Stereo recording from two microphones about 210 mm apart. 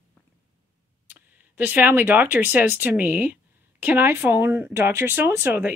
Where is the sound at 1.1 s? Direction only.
10° right (ahead or behind).